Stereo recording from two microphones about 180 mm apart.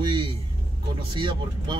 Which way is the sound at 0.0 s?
25° right (ahead or behind).